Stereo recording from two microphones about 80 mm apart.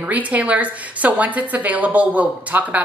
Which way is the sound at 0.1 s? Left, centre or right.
Centre.